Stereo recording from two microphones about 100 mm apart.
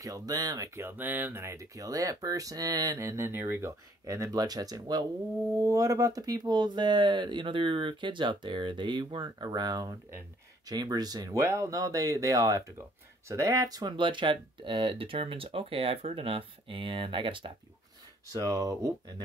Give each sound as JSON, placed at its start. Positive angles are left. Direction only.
{"t": 0.0, "sound": "speech", "side_deg": -35}
{"t": 11.4, "sound": "speech", "side_deg": -25}
{"t": 13.9, "sound": "speech", "side_deg": -55}
{"t": 18.3, "sound": "speech", "side_deg": -35}